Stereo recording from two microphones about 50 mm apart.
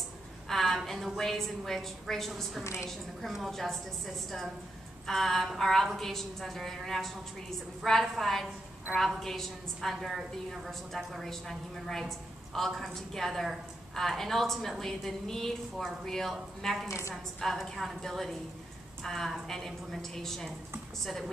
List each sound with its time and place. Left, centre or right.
0.5 s a woman's voice: centre
2.6 s a woman's voice: left
2.9 s a woman's voice: centre